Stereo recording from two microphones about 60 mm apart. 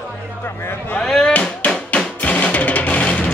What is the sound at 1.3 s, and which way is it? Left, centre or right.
Music, left.